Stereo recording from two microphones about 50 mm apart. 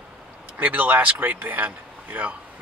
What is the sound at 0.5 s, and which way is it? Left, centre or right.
Speech, right.